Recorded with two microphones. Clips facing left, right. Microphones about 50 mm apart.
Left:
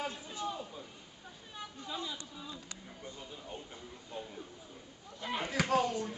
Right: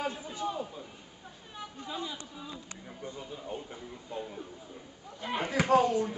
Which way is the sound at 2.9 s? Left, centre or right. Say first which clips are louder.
Right 7 dB; centre.